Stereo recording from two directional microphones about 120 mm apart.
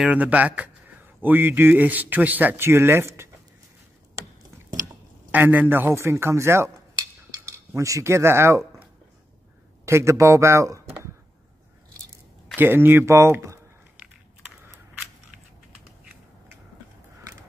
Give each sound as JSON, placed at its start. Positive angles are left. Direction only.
{"t": 0.0, "sound": "speech", "side_deg": -10}
{"t": 5.3, "sound": "speech", "side_deg": -15}
{"t": 9.8, "sound": "speech", "side_deg": -25}
{"t": 12.5, "sound": "speech", "side_deg": -20}